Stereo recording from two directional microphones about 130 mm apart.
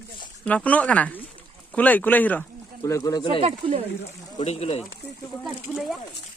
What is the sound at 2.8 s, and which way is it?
Speech, 25° left (ahead or behind).